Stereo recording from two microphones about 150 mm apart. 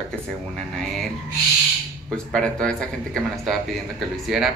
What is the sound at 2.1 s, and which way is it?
Speech, 5° left (ahead or behind).